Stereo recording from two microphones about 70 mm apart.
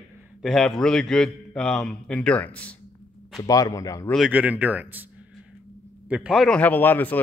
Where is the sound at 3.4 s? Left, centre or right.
Left.